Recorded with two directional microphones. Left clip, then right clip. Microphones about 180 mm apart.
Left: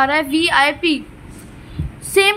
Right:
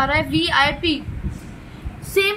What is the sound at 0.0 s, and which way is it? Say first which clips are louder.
A woman's voice: left 4 dB; 30° left (ahead or behind).